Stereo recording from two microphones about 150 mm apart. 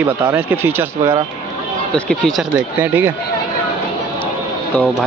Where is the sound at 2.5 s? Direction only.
10° right (ahead or behind).